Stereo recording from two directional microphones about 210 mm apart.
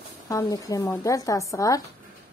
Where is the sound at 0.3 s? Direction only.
15° left (ahead or behind).